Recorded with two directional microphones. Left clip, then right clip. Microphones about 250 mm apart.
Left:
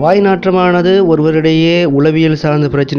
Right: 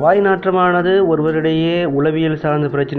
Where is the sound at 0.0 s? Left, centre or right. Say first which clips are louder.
Left 3 dB; left.